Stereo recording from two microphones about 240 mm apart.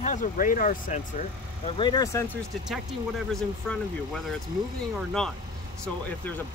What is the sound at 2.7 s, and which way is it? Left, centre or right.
Speech, centre.